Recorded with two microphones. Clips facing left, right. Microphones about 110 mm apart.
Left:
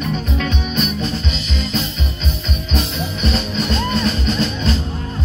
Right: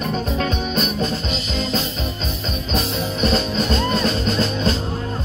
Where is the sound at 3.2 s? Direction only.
40° right (ahead or behind).